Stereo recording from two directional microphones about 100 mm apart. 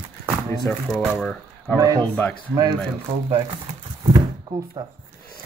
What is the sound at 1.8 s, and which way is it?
Speech, 40° right (ahead or behind).